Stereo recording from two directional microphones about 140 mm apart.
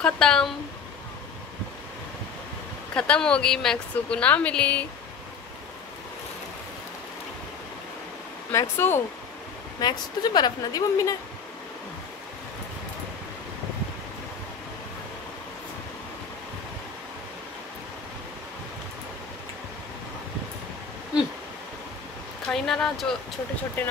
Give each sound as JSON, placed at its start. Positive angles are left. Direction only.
{"t": 0.0, "sound": "speech", "side_deg": 5}
{"t": 2.9, "sound": "speech", "side_deg": 10}
{"t": 8.5, "sound": "speech", "side_deg": 15}
{"t": 9.8, "sound": "a woman's voice", "side_deg": 30}
{"t": 22.5, "sound": "speech", "side_deg": 5}